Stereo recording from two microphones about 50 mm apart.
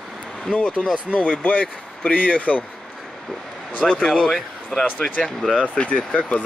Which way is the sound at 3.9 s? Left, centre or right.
Centre.